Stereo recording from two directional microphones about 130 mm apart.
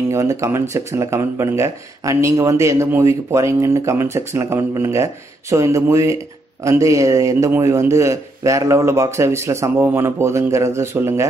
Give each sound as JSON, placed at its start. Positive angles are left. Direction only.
{"t": 0.1, "sound": "speech", "side_deg": -25}